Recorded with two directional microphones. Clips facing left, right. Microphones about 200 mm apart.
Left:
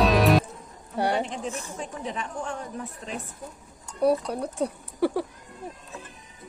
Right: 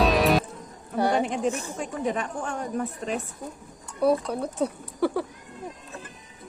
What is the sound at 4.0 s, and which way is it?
Speech, 10° left (ahead or behind).